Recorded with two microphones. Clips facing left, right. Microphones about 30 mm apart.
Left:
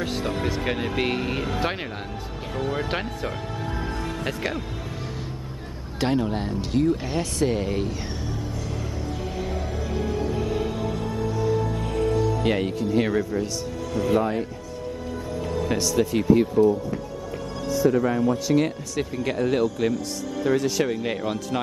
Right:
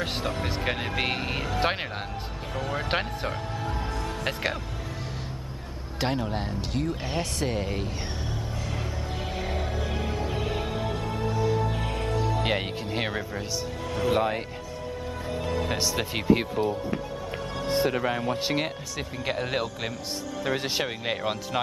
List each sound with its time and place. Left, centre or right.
0.9 s speech: centre
2.8 s speech: centre
5.9 s speech: centre
9.4 s music: right
12.4 s speech: right
13.9 s speech: right
15.7 s speech: right
18.9 s speech: centre
19.3 s speech: right
20.8 s speech: right